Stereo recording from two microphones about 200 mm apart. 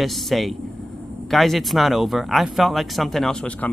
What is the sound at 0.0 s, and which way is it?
Speech, centre (ahead or behind).